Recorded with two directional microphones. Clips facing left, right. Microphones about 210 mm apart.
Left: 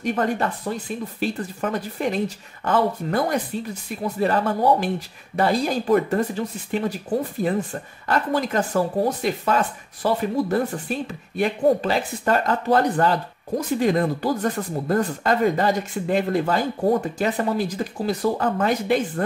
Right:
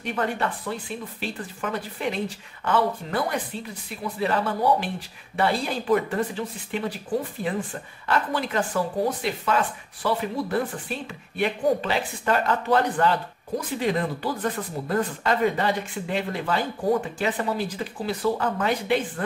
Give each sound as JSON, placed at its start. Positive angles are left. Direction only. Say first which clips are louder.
{"t": 0.0, "sound": "speech", "louder": "left 4 dB", "side_deg": 40}